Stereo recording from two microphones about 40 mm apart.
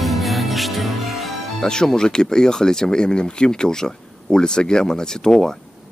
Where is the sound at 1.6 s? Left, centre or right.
Centre.